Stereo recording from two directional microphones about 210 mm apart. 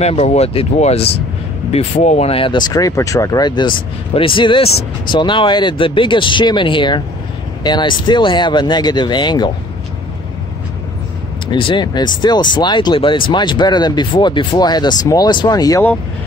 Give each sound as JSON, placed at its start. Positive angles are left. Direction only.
{"t": 0.0, "sound": "speech", "side_deg": 30}
{"t": 11.5, "sound": "speech", "side_deg": 25}